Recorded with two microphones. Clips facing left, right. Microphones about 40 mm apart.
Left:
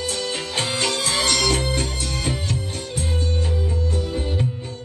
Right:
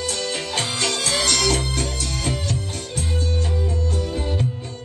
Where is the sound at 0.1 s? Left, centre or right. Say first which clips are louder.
Even; centre.